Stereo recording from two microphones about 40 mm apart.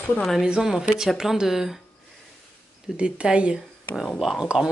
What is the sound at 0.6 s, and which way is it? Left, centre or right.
Speech, centre.